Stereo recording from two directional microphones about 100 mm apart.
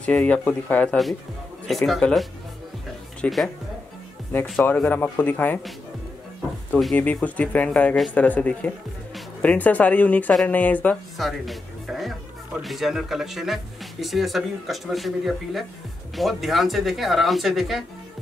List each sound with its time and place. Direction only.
0.0 s speech: 15° left (ahead or behind)
1.7 s speech: centre (ahead or behind)
4.7 s speech: 15° left (ahead or behind)
7.0 s speech: 15° left (ahead or behind)
11.1 s speech: centre (ahead or behind)